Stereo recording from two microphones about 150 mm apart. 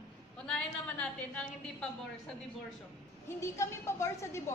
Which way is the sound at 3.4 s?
20° left (ahead or behind).